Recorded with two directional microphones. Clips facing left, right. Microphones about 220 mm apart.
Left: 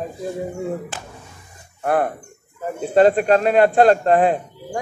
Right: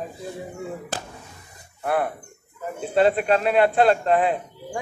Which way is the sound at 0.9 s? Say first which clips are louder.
Right 3 dB; 40° right (ahead or behind).